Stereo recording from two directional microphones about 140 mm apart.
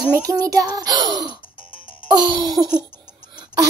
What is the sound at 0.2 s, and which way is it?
Speech, 25° right (ahead or behind).